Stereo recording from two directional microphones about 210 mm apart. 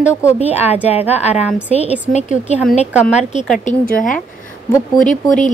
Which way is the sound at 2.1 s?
35° left (ahead or behind).